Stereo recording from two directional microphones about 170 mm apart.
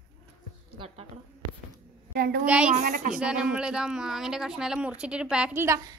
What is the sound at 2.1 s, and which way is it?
Speech, 65° right (ahead or behind).